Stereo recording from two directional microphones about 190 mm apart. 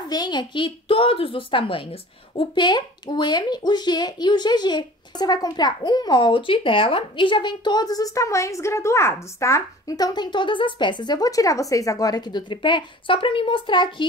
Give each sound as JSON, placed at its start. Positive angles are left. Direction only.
{"t": 0.1, "sound": "speech", "side_deg": 20}